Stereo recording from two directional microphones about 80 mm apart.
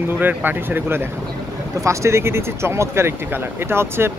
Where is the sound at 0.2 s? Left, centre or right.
Right.